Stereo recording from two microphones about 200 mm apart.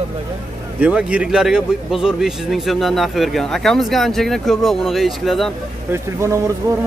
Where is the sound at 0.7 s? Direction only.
5° right (ahead or behind).